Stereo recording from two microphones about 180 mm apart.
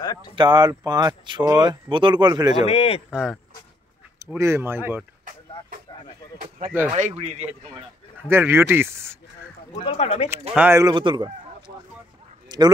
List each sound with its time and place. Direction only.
0.0 s a sound: 20° left (ahead or behind)
0.4 s speech: 25° right (ahead or behind)
2.5 s speech: 35° left (ahead or behind)
3.1 s speech: 5° right (ahead or behind)
4.2 s speech: 15° right (ahead or behind)
6.9 s speech: 35° right (ahead or behind)
8.2 s speech: 15° right (ahead or behind)
9.9 s speech: 35° left (ahead or behind)
10.5 s speech: 10° right (ahead or behind)
10.8 s speech: 25° right (ahead or behind)
12.4 s bow-wow: 25° right (ahead or behind)